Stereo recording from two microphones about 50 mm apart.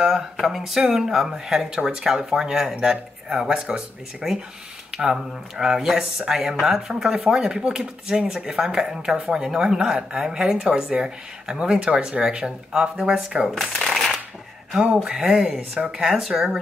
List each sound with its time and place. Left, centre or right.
0.0 s speech: centre
13.6 s shuffling cards: centre
14.7 s speech: centre